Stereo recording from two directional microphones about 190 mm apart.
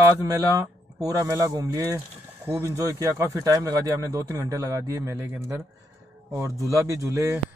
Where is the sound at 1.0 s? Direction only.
15° right (ahead or behind).